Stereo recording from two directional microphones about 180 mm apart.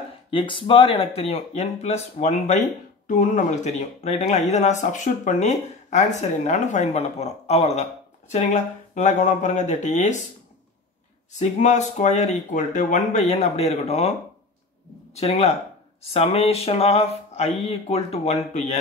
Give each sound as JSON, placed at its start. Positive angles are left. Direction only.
{"t": 0.3, "sound": "speech", "side_deg": 30}
{"t": 11.3, "sound": "speech", "side_deg": 40}
{"t": 15.1, "sound": "speech", "side_deg": 35}